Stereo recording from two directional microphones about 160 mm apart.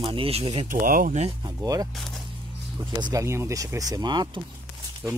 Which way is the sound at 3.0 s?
20° right (ahead or behind).